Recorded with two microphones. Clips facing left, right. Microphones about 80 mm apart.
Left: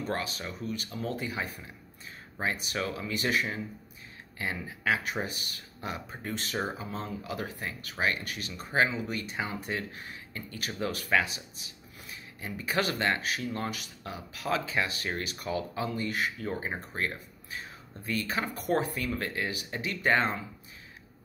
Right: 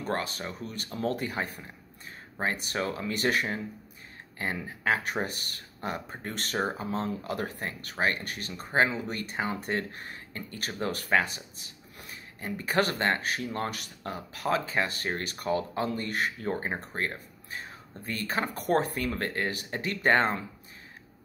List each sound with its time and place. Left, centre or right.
0.0 s speech: right